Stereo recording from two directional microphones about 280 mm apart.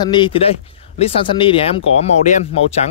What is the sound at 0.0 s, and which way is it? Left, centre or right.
Speech, centre.